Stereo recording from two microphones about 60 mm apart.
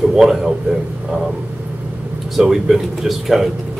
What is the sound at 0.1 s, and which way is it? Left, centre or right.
Speech, centre.